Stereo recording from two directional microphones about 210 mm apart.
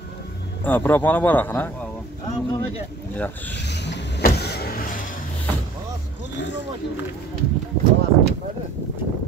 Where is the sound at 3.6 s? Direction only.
55° left (ahead or behind).